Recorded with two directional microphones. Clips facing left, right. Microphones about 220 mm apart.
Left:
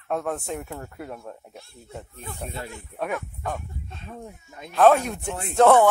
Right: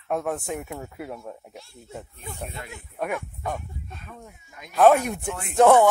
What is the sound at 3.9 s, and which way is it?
Speech, 30° left (ahead or behind).